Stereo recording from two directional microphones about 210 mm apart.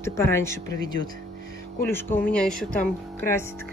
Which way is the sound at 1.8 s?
10° left (ahead or behind).